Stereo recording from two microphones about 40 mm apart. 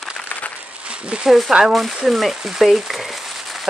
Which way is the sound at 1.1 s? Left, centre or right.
Right.